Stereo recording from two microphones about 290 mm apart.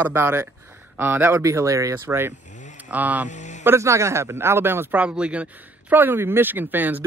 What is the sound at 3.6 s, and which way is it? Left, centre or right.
A man's voice, centre.